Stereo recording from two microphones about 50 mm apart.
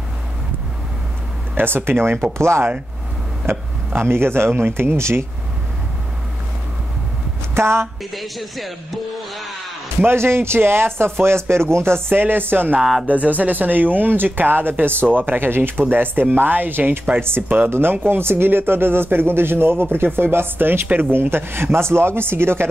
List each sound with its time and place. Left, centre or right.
1.6 s speech: right
2.3 s a woman's voice: right
3.4 s speech: right
7.5 s a woman's voice: right
8.1 s speech: centre
10.0 s speech: right
13.0 s speech: right